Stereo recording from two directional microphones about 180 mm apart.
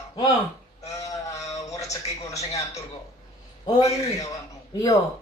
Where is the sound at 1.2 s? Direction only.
20° left (ahead or behind).